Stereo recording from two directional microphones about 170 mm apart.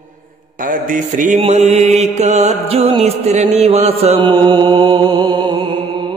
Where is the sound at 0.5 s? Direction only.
50° right (ahead or behind).